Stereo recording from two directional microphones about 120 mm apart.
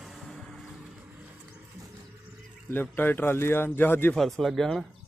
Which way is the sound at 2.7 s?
15° left (ahead or behind).